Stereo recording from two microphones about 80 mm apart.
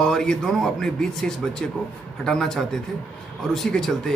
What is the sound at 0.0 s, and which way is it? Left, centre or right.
Speech, centre.